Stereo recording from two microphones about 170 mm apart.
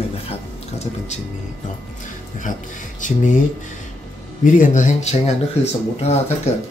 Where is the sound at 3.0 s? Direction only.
50° left (ahead or behind).